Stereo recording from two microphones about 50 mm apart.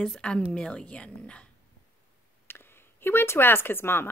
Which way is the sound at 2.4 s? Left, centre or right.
Left.